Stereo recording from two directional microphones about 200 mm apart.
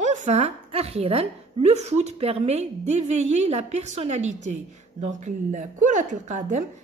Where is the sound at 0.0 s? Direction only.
35° right (ahead or behind).